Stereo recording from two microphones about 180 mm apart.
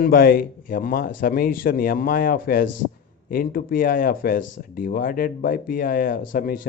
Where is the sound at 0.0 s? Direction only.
55° left (ahead or behind).